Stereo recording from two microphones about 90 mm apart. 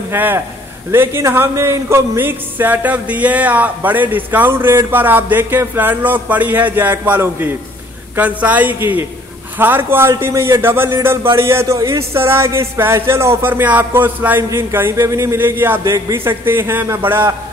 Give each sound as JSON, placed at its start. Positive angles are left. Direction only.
{"t": 0.1, "sound": "speech", "side_deg": -20}